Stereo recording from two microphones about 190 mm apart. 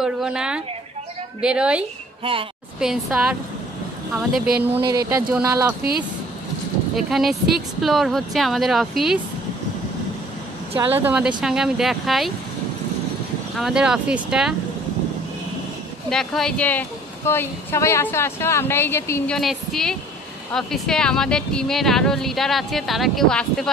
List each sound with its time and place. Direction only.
0.0 s a woman's voice: 5° right (ahead or behind)
7.0 s speech: centre (ahead or behind)
10.9 s a woman's voice: 10° right (ahead or behind)
13.6 s speech: 5° right (ahead or behind)
16.1 s speech: 5° left (ahead or behind)
19.3 s speech: centre (ahead or behind)